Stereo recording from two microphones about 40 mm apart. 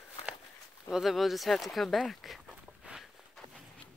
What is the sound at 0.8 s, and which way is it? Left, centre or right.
Speech, centre.